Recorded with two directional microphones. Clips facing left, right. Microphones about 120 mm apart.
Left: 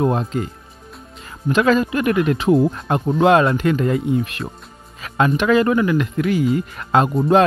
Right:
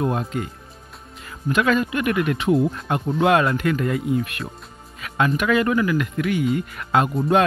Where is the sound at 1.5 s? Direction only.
30° left (ahead or behind).